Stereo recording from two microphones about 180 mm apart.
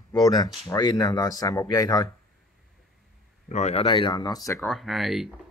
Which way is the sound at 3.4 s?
40° left (ahead or behind).